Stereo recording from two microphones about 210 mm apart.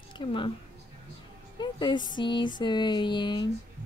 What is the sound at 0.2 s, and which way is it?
Speech, 25° left (ahead or behind).